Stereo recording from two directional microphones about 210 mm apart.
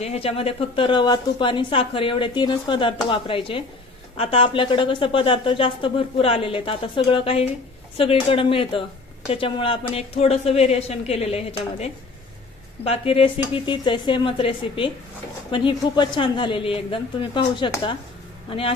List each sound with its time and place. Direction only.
0.0 s a woman's voice: 30° left (ahead or behind)